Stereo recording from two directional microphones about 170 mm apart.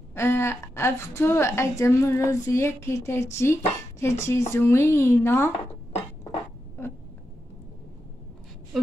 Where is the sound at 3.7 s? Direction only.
15° left (ahead or behind).